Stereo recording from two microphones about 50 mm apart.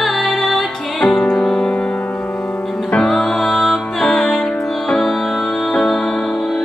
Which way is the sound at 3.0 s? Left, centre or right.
Centre.